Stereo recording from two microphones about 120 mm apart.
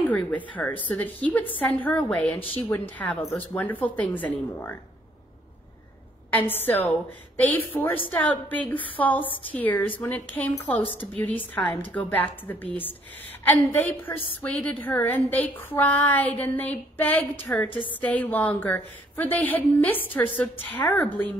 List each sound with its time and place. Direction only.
0.0 s a woman's voice: 15° left (ahead or behind)
6.3 s a woman's voice: 15° left (ahead or behind)
13.4 s a woman's voice: 15° left (ahead or behind)
17.6 s a woman's voice: 45° left (ahead or behind)
18.0 s a woman's voice: 15° left (ahead or behind)